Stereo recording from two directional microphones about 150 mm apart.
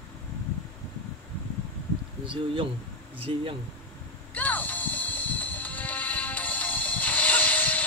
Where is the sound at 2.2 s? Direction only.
35° right (ahead or behind).